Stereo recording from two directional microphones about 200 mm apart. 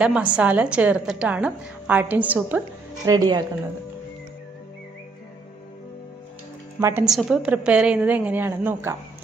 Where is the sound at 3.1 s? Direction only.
20° right (ahead or behind).